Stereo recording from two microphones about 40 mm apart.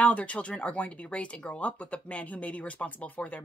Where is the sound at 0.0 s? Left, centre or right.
Left.